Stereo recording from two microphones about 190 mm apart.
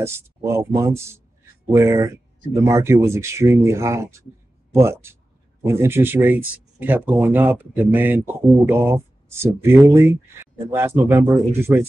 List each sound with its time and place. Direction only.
0.0 s speech: 15° right (ahead or behind)